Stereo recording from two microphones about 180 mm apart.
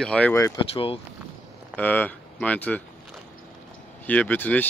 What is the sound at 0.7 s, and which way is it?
Speech, 30° left (ahead or behind).